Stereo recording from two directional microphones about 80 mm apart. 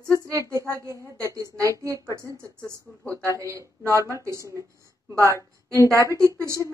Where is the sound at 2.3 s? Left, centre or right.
Centre.